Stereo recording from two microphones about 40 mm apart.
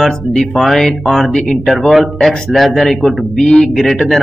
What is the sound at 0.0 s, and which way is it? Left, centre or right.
A man's voice, centre.